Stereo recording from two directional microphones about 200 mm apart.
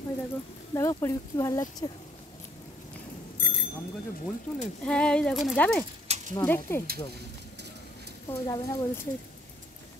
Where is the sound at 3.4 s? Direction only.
55° left (ahead or behind).